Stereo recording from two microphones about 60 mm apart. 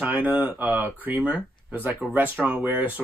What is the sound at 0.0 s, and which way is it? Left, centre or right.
Speech, right.